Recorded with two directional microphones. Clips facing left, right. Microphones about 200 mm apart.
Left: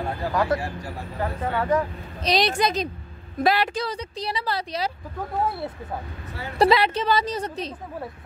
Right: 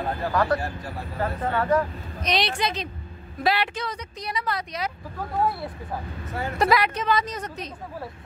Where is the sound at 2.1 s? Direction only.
35° left (ahead or behind).